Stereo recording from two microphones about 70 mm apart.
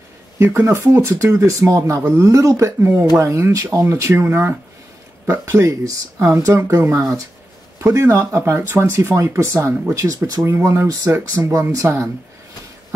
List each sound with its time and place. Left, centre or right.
0.4 s speech: right
10.4 s speech: right